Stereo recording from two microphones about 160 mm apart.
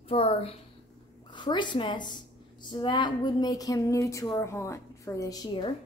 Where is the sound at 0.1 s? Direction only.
40° left (ahead or behind).